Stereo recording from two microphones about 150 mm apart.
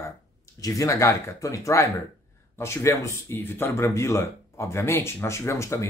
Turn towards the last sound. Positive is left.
turn(degrees=20)  # may be behind; listen again after turning